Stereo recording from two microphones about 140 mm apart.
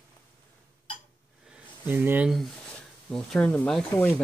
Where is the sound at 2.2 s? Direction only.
Centre (ahead or behind).